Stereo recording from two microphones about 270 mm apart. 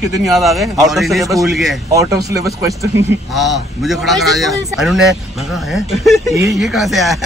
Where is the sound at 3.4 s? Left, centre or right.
Centre.